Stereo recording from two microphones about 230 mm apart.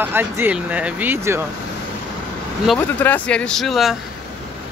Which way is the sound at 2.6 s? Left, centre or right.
Centre.